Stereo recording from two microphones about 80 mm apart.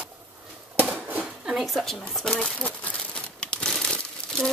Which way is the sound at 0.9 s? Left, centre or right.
Centre.